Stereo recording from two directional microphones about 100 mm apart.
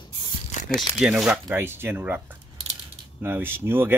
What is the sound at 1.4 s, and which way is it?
Speech, 20° right (ahead or behind).